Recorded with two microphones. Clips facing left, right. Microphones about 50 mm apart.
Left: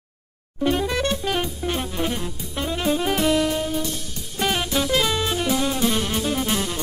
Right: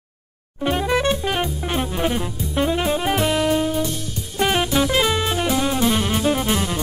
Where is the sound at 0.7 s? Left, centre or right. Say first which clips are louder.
Right 3 dB; right.